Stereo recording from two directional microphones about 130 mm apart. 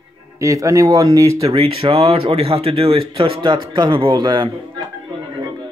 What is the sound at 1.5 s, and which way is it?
Speech, 45° right (ahead or behind).